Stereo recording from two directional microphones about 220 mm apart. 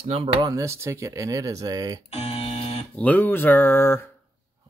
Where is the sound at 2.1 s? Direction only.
30° left (ahead or behind).